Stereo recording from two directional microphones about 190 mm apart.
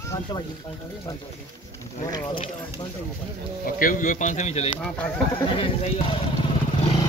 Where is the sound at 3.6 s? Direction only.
45° left (ahead or behind); by 6.2 s 30° left (ahead or behind).